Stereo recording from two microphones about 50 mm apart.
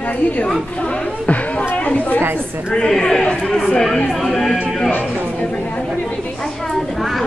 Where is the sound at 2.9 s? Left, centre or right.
Centre.